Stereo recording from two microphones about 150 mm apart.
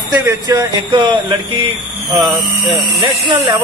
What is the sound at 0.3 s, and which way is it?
Speech, 20° right (ahead or behind).